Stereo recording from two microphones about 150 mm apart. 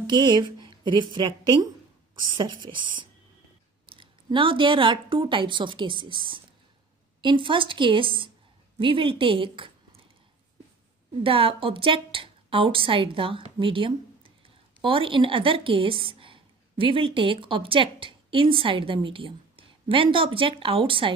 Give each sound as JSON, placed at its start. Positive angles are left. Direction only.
{"t": 0.0, "sound": "a woman's voice", "side_deg": -30}
{"t": 11.2, "sound": "a woman's voice", "side_deg": -35}